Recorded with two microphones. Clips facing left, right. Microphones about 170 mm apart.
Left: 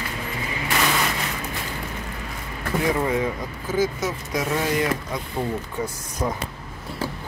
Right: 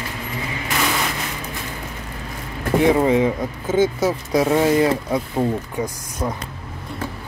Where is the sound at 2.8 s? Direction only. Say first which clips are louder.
Right 7 dB; 25° right (ahead or behind).